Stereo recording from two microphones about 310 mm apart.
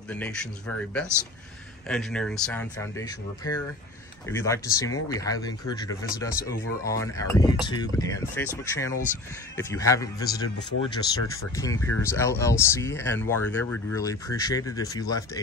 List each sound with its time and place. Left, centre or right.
0.1 s speech: centre
1.9 s speech: centre
4.3 s speech: centre